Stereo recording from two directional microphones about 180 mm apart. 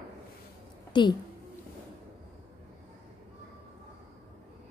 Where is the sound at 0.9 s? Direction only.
25° left (ahead or behind).